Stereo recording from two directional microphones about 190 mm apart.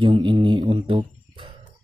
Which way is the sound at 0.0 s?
25° right (ahead or behind).